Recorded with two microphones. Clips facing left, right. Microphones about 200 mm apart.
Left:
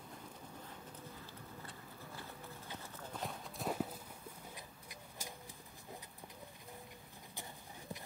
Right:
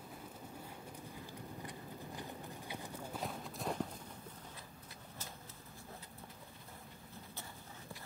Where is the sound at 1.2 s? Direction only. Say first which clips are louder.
Right 4 dB; 15° right (ahead or behind).